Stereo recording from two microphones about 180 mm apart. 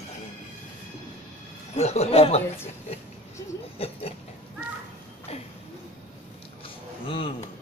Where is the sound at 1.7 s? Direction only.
35° left (ahead or behind).